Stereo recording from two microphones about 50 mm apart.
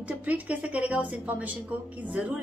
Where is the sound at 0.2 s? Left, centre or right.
Right.